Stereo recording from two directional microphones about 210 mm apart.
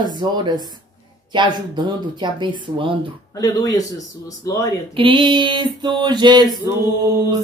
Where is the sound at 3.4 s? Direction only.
15° left (ahead or behind).